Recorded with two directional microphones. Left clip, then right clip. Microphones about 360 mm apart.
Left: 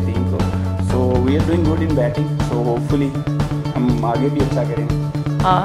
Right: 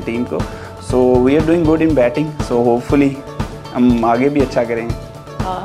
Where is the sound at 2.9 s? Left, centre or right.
Right.